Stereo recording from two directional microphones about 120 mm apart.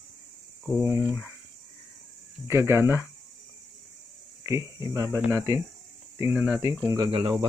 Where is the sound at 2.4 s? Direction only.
25° right (ahead or behind).